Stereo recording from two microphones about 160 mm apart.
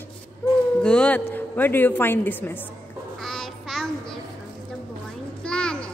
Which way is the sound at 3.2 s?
Centre (ahead or behind).